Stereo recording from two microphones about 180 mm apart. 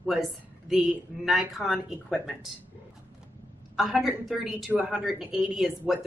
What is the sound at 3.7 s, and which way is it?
A woman's voice, centre (ahead or behind).